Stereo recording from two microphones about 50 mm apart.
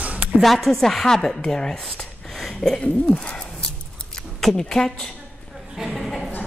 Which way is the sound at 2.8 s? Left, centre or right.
Left.